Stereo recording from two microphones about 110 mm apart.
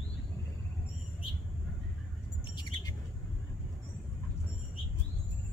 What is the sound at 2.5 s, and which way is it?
Bird, 35° left (ahead or behind).